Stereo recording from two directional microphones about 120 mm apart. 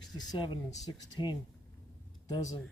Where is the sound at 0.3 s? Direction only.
40° left (ahead or behind).